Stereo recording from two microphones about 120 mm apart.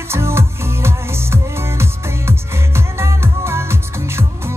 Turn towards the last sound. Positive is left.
turn(degrees=-20)  # may be behind; listen again after turning